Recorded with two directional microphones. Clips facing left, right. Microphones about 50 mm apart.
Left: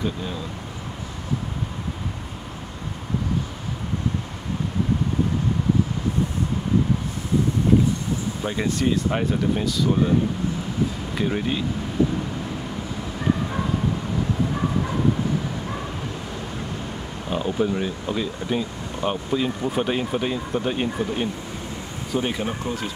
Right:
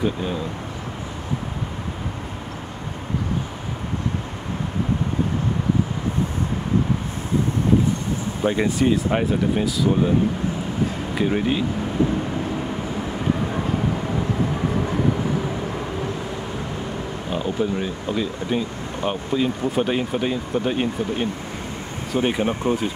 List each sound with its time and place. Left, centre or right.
0.0 s speech: centre
8.5 s speech: centre
11.1 s speech: centre
17.3 s speech: centre
22.2 s speech: right